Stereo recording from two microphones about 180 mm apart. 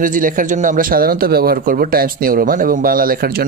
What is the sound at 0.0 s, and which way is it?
Speech, 50° right (ahead or behind).